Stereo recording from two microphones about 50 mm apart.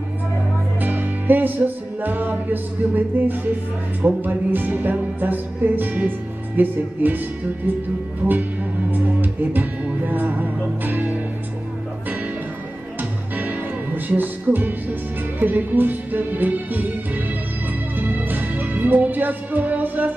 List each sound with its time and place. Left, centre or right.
0.7 s music: right
8.9 s music: right
10.0 s church bell: right
13.4 s music: right